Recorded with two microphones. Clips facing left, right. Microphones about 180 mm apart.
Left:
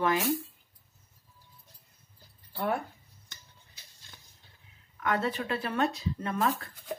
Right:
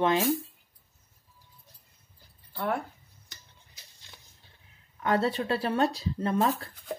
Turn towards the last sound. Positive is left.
turn(degrees=-30)  # may be behind; listen again after turning